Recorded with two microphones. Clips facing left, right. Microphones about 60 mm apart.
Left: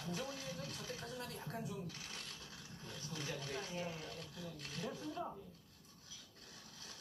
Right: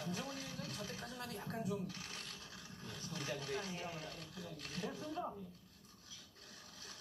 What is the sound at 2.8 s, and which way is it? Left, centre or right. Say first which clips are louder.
Speech: right 1 dB; right.